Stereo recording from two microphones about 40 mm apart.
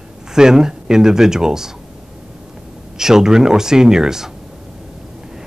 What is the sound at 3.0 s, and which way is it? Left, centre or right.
Speech, centre.